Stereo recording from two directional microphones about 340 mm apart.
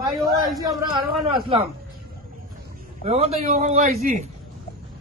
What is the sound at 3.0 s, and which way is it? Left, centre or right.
Speech, centre.